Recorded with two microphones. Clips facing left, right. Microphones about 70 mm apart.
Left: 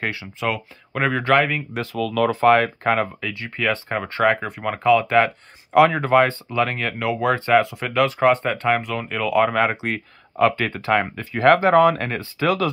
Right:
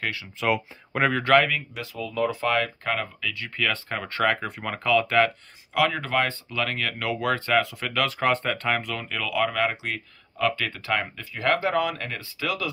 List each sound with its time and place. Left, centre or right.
0.0 s speech: left
1.0 s speech: centre
1.7 s speech: left
2.0 s speech: left
2.4 s speech: left
3.4 s speech: left
5.7 s speech: left